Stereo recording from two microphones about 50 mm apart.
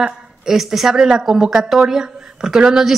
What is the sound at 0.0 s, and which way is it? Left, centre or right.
A woman's voice, centre.